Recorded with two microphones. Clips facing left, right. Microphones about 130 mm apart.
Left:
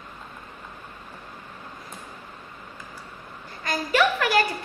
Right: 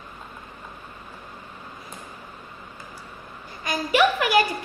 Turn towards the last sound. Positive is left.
turn(degrees=-15)  # may be behind; listen again after turning